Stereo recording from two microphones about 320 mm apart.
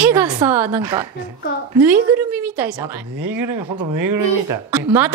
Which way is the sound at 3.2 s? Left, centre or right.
Right.